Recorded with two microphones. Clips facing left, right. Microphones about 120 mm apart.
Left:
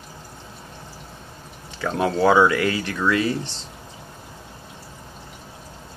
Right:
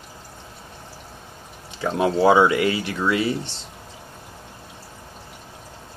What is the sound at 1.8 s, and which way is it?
Speech, 25° right (ahead or behind).